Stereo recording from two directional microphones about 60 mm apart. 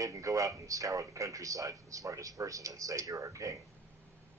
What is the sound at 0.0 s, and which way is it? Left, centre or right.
A man's voice, right.